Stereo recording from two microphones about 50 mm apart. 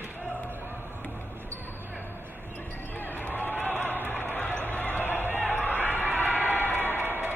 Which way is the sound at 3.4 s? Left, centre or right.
Right.